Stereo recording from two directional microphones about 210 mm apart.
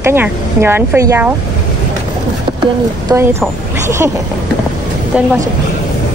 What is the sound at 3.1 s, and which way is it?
A woman's voice, 15° right (ahead or behind).